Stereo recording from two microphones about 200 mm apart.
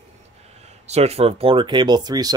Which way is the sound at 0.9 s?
30° right (ahead or behind).